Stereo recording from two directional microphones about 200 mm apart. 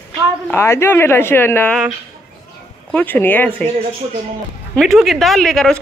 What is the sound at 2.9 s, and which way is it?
Speech, 10° left (ahead or behind).